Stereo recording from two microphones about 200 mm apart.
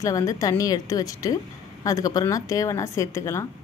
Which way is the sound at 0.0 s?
15° left (ahead or behind).